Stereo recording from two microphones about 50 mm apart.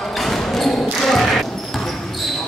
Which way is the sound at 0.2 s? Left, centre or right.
Centre.